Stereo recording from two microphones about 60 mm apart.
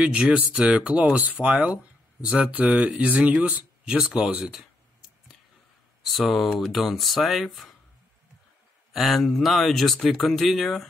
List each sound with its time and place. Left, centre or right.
0.0 s speech: centre
8.9 s speech: centre